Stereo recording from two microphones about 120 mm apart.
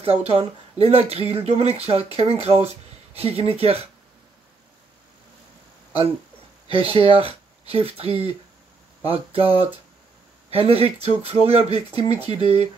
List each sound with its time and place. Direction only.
0.0 s speech: 55° right (ahead or behind)
6.7 s speech: 50° right (ahead or behind)